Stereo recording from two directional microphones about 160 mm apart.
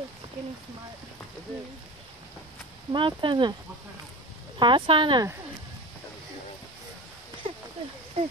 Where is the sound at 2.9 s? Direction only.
30° right (ahead or behind).